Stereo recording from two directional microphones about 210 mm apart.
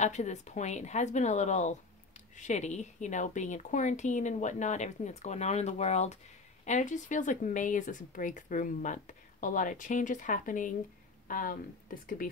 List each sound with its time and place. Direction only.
0.0 s a woman's voice: 35° left (ahead or behind)